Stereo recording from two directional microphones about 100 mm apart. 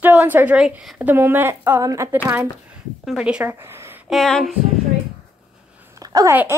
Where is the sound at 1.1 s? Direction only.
20° right (ahead or behind).